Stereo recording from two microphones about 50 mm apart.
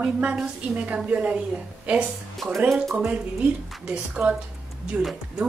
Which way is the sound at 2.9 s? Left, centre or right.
Right.